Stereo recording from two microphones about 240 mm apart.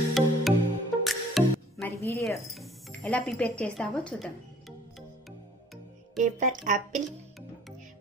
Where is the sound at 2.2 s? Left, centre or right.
Centre.